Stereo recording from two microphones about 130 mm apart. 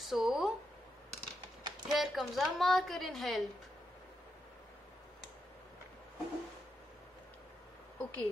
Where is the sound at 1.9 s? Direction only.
Centre (ahead or behind).